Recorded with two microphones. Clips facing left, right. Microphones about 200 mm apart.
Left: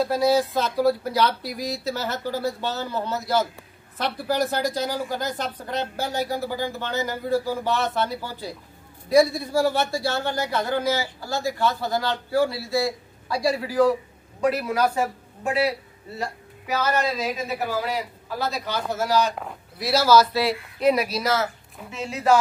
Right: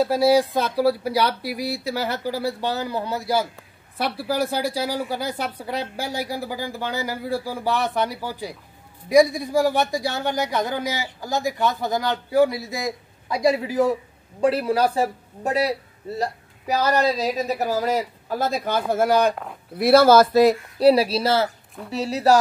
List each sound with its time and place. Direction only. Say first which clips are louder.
0.0 s speech: right 3 dB; 10° right (ahead or behind); by 20.9 s 45° right (ahead or behind)
20.9 s speech: right 4 dB; 30° right (ahead or behind)